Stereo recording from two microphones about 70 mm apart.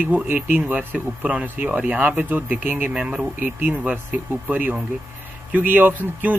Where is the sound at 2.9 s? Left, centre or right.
Centre.